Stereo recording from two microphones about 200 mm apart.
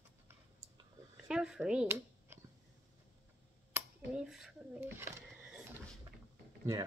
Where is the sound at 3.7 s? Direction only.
10° right (ahead or behind).